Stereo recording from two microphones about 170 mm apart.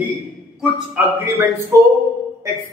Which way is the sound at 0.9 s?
15° right (ahead or behind).